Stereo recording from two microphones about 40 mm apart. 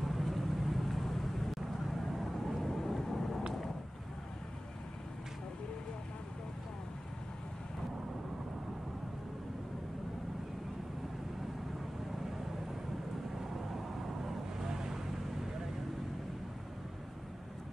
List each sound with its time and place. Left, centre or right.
0.0 s vehicle: centre
13.4 s vehicle: centre